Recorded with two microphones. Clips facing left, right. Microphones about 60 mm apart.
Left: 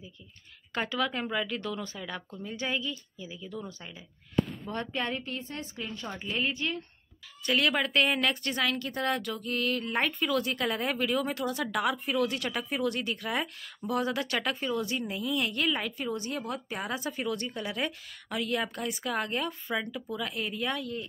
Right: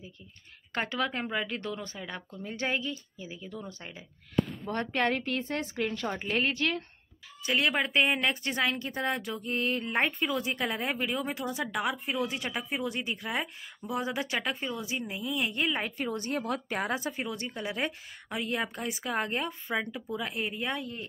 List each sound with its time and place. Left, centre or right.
0.7 s speech: right
2.5 s speech: right
2.9 s speech: right
4.6 s speech: right
6.5 s speech: right
7.5 s speech: right
15.8 s speech: right
16.9 s speech: right